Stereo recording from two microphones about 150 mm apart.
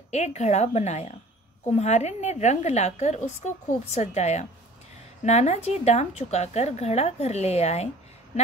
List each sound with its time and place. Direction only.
0.1 s a woman's voice: 45° left (ahead or behind)